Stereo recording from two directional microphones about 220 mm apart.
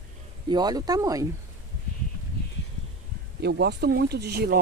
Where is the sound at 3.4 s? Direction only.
50° right (ahead or behind).